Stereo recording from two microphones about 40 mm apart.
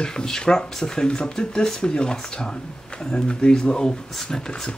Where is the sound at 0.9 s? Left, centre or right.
Left.